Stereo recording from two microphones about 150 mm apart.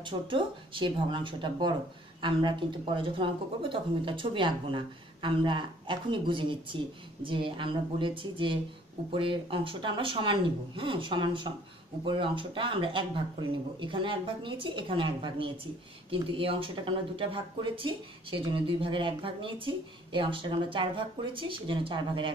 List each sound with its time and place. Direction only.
0.0 s speech: 35° right (ahead or behind)